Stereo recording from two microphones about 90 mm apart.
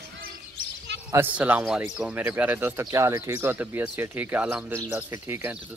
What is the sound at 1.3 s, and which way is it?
Speech, 15° right (ahead or behind).